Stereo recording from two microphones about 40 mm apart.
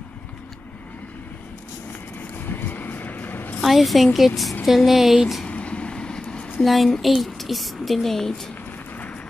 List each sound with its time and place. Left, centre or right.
2.4 s vehicle: left
3.6 s speech: centre
5.5 s train: left
6.6 s speech: centre